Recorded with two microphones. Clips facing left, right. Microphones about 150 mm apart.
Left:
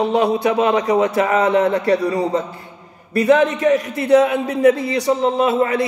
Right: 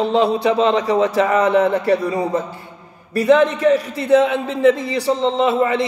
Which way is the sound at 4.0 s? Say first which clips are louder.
Left 3 dB; 25° right (ahead or behind).